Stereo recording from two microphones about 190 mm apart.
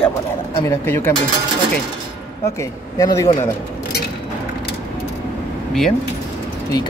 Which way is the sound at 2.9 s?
15° left (ahead or behind).